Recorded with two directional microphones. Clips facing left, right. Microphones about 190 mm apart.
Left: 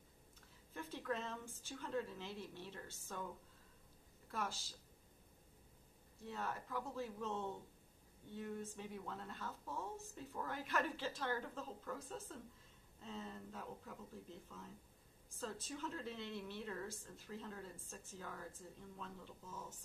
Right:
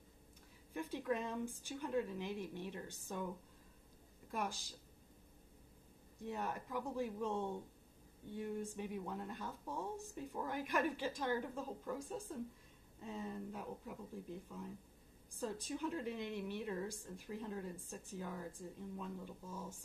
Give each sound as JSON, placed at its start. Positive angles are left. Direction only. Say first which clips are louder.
{"t": 0.7, "sound": "a woman's voice", "louder": "right 4 dB", "side_deg": -15}
{"t": 4.3, "sound": "a woman's voice", "louder": "right 3 dB", "side_deg": -15}
{"t": 6.2, "sound": "a woman's voice", "louder": "right 3 dB", "side_deg": -15}